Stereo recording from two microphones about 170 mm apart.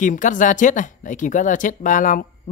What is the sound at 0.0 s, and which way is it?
Speech, 50° left (ahead or behind).